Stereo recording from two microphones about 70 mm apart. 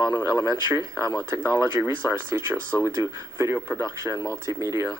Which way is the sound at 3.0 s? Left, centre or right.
Right.